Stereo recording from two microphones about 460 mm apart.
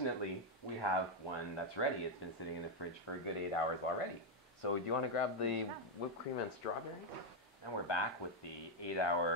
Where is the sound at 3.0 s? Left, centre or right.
Left.